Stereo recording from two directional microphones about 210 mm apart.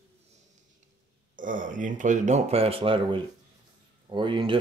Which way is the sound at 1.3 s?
40° right (ahead or behind).